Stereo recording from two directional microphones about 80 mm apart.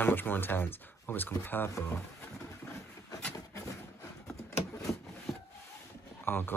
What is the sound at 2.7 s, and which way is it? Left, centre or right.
Vehicle, left.